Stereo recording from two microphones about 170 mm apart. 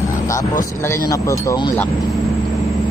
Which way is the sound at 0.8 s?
20° left (ahead or behind).